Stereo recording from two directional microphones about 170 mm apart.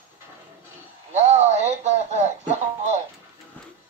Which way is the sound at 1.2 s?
40° right (ahead or behind).